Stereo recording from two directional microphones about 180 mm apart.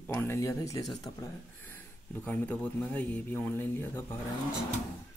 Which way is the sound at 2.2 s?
10° left (ahead or behind).